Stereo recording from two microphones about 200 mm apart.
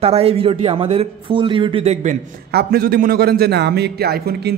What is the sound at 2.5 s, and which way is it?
Speech, 50° right (ahead or behind).